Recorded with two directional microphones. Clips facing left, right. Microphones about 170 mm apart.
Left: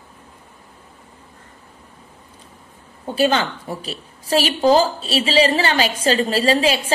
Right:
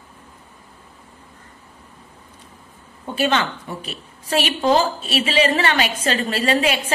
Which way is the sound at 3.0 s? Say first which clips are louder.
Left 2 dB; 35° left (ahead or behind).